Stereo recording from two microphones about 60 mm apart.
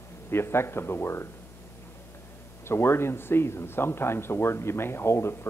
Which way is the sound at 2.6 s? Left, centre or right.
Left.